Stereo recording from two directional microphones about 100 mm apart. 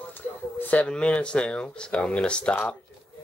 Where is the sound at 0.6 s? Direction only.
15° left (ahead or behind).